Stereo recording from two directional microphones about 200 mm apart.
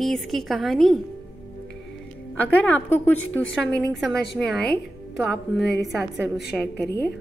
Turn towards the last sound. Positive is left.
turn(degrees=55)  # may be behind; listen again after turning